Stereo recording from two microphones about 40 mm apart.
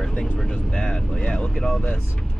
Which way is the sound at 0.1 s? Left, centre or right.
Left.